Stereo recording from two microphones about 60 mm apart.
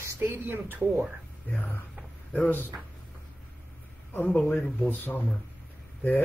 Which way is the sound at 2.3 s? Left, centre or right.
Left.